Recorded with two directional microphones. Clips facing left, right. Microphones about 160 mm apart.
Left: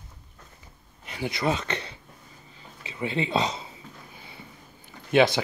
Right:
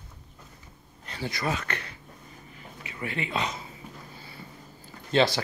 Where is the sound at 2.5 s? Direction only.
25° left (ahead or behind).